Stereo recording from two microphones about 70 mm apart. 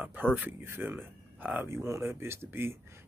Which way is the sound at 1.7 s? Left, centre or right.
Right.